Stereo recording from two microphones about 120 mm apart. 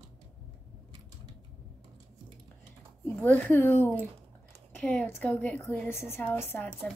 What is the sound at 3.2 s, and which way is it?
A woman's voice, 10° left (ahead or behind).